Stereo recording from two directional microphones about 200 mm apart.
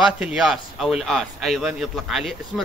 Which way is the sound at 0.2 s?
5° right (ahead or behind).